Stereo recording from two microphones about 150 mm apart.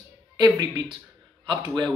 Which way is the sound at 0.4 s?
25° right (ahead or behind).